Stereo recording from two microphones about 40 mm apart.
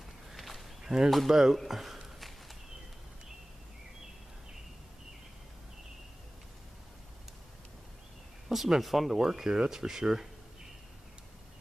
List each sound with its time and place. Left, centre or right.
0.3 s walk: centre
0.8 s speech: centre
1.7 s a sound: centre
8.5 s speech: centre